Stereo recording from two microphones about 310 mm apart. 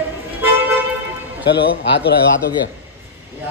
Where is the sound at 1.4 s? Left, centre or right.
Left.